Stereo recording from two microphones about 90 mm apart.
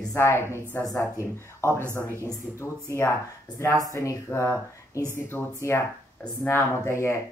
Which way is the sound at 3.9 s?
35° left (ahead or behind).